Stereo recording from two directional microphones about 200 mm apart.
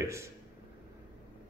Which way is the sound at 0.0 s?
15° right (ahead or behind).